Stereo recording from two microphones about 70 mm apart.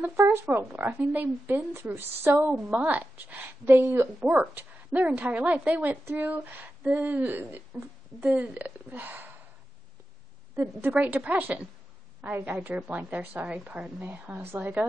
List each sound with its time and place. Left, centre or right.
0.0 s a woman's voice: right
1.1 s a woman's voice: right
3.6 s a woman's voice: right
4.3 s speech: right
10.5 s a woman's voice: right
10.9 s speech: right
14.3 s a woman's voice: right